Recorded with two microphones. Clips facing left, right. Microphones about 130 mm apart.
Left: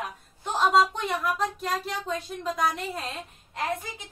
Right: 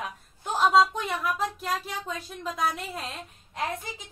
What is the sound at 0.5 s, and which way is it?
Speech, centre (ahead or behind).